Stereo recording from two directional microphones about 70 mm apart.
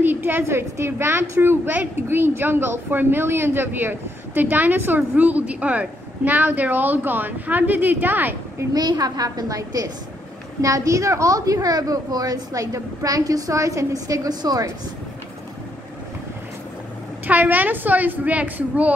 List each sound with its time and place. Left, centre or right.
0.0 s a woman's voice: right
8.7 s a woman's voice: right
17.3 s a woman's voice: right